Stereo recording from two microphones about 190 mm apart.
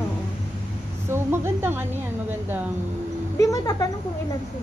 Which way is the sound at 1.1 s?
15° right (ahead or behind).